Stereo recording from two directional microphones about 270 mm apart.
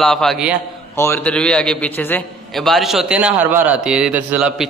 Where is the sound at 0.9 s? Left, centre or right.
Centre.